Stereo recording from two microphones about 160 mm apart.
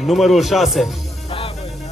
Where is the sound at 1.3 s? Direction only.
40° left (ahead or behind).